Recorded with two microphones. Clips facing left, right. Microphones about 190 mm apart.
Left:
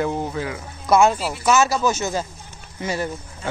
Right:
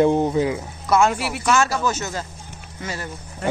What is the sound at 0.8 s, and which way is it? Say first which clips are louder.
Speech: left 2 dB; 10° left (ahead or behind).